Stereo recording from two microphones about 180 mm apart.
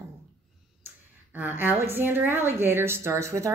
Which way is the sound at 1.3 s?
10° right (ahead or behind).